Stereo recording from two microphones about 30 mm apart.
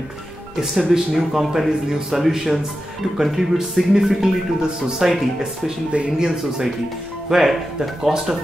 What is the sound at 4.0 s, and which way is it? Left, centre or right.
Speech, centre.